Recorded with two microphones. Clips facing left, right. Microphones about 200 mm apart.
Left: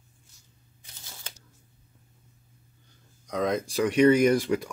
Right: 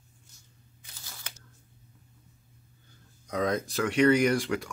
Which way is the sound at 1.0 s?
25° left (ahead or behind).